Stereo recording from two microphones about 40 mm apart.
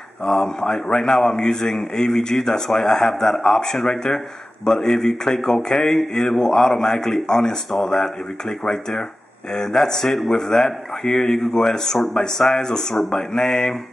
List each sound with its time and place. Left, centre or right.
0.2 s speech: centre